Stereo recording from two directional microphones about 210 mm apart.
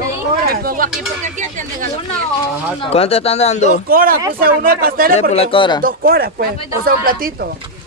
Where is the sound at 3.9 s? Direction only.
45° right (ahead or behind).